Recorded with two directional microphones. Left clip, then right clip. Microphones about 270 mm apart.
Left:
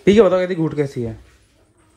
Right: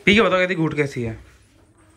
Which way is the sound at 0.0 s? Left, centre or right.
Left.